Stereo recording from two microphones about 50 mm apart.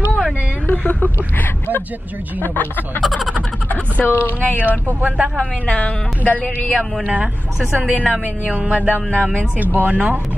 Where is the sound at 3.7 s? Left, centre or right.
Left.